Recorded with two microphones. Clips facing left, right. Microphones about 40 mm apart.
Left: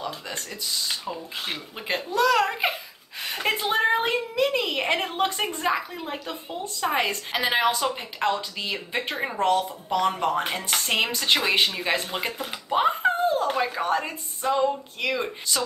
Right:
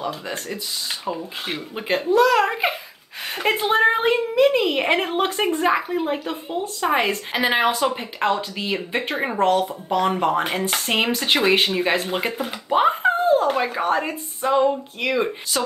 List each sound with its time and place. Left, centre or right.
0.0 s a woman's voice: centre